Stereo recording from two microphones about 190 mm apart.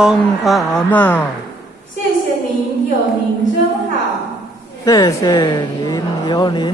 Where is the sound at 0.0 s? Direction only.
Centre (ahead or behind).